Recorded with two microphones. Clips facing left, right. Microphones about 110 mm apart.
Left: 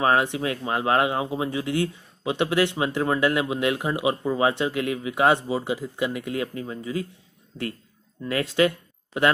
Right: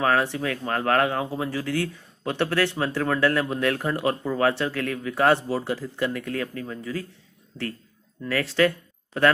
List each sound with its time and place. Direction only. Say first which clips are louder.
0.0 s speech: left 1 dB; 20° left (ahead or behind)